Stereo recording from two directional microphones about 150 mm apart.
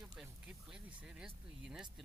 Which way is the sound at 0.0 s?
5° right (ahead or behind).